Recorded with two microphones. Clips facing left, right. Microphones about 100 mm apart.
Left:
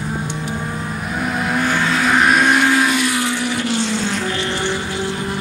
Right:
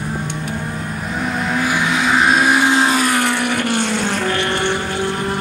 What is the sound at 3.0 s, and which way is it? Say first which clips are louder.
Vehicle: right 2 dB; 55° right (ahead or behind).